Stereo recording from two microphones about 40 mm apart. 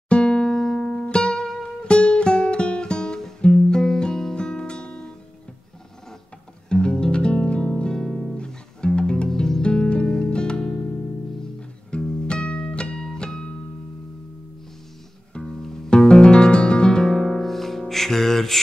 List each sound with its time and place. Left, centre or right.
0.1 s music: left
0.5 s music: centre
1.8 s music: left
6.7 s music: left
7.7 s music: centre
9.3 s music: centre
9.6 s music: left
11.9 s music: left
12.9 s music: centre
15.4 s music: centre
16.1 s music: left; by 18.6 s centre